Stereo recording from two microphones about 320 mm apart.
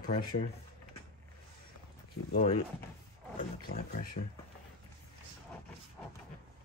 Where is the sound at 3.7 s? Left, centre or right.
Left.